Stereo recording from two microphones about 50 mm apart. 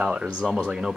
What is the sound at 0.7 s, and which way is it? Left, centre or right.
Speech, centre.